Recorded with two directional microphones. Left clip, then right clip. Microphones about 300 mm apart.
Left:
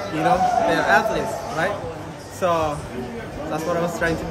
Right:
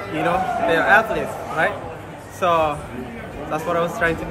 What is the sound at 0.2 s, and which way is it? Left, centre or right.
Speech, centre.